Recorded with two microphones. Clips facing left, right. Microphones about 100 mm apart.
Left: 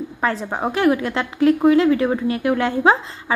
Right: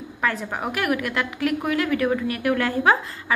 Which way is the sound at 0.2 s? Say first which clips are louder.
Left 3 dB; 30° left (ahead or behind).